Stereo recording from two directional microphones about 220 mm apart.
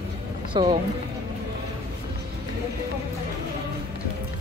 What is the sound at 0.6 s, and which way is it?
Speech, 20° right (ahead or behind).